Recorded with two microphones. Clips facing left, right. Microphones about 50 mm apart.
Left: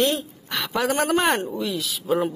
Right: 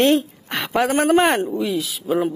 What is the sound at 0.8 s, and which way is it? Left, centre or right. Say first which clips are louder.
Speech: right 4 dB; centre.